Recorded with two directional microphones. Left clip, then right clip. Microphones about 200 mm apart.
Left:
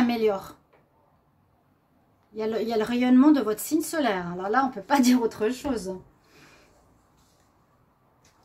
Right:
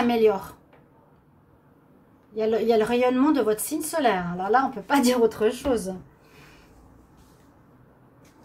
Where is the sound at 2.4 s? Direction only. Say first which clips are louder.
Right 5 dB; 45° left (ahead or behind).